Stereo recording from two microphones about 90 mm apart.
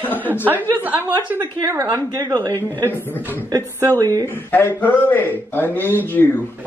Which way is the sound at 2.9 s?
25° left (ahead or behind).